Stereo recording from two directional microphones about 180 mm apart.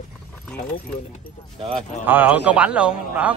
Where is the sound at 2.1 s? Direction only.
10° right (ahead or behind).